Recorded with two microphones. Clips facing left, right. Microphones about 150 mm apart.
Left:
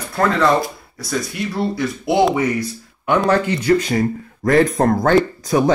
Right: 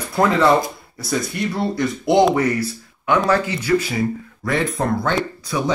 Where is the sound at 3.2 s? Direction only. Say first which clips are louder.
Left 2 dB; 10° right (ahead or behind).